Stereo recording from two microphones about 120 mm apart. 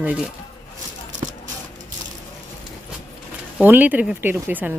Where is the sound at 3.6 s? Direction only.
15° right (ahead or behind).